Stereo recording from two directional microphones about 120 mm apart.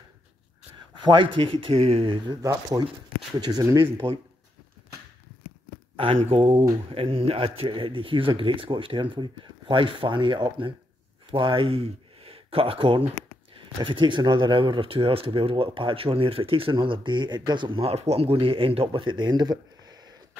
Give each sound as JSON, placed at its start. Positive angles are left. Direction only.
{"t": 1.0, "sound": "speech", "side_deg": -45}
{"t": 2.2, "sound": "speech", "side_deg": -30}
{"t": 3.6, "sound": "speech", "side_deg": -20}
{"t": 6.3, "sound": "speech", "side_deg": -45}